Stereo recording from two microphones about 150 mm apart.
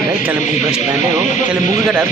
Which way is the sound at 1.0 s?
55° left (ahead or behind).